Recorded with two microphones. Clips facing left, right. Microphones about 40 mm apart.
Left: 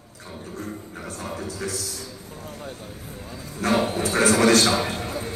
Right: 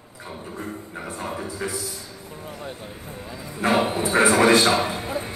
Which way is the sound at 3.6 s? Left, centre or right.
Right.